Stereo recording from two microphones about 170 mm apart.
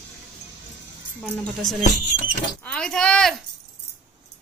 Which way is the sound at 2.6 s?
10° left (ahead or behind).